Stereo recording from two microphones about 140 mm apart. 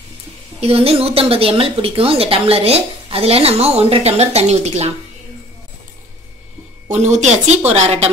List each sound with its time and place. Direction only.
0.6 s a woman's voice: 45° right (ahead or behind)
6.9 s a woman's voice: 55° right (ahead or behind)